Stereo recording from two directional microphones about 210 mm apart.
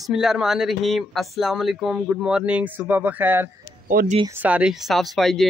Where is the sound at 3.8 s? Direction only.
40° right (ahead or behind).